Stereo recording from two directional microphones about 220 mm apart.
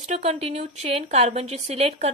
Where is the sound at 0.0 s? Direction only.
30° right (ahead or behind).